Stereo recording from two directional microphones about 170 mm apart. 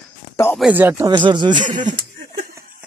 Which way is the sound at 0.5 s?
5° right (ahead or behind).